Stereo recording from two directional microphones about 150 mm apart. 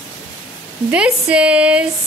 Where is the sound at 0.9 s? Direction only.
5° right (ahead or behind).